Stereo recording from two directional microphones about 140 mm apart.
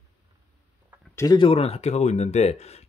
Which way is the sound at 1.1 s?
25° left (ahead or behind).